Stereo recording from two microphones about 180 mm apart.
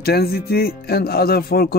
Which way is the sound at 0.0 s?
60° left (ahead or behind).